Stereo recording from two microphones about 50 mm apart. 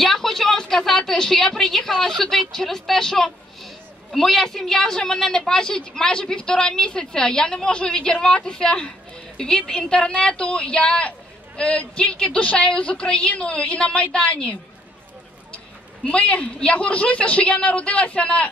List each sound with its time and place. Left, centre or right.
0.0 s a woman's voice: centre; by 14.5 s left
16.0 s a woman's voice: left